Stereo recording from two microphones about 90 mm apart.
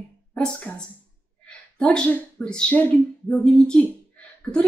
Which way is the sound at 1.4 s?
10° left (ahead or behind).